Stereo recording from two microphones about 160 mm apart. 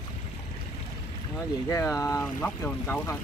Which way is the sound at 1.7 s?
20° left (ahead or behind).